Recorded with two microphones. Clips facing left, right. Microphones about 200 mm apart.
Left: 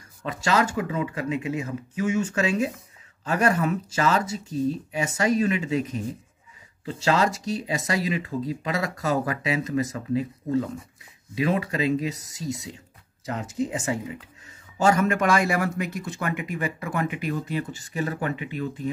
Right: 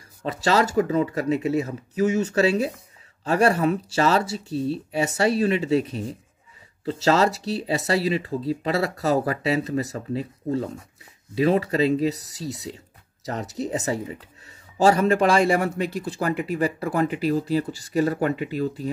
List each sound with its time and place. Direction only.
0.2 s speech: 35° right (ahead or behind)